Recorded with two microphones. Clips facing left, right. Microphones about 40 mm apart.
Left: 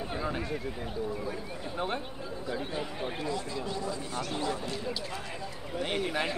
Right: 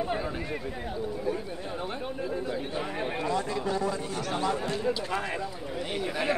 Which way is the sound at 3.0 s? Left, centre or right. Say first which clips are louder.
Right 8 dB; right.